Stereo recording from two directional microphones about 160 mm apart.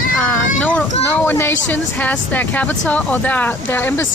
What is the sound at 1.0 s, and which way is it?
Speech, 15° left (ahead or behind).